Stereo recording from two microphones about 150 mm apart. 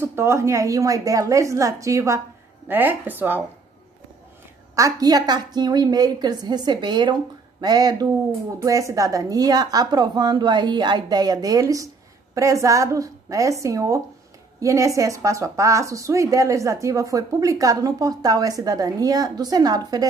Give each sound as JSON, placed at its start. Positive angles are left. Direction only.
{"t": 0.0, "sound": "a woman's voice", "side_deg": -15}
{"t": 4.7, "sound": "a woman's voice", "side_deg": -25}